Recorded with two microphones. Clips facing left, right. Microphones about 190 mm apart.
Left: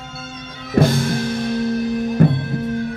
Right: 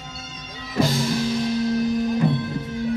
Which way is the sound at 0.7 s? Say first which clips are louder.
Left 5 dB; 55° left (ahead or behind).